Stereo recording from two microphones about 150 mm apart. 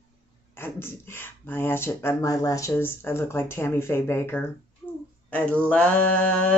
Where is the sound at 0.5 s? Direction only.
15° left (ahead or behind).